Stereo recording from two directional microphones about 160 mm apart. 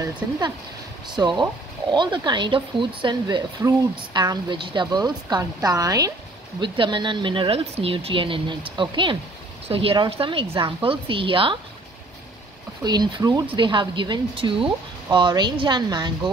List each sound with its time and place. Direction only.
0.2 s speech: 20° right (ahead or behind)
12.8 s speech: 25° right (ahead or behind)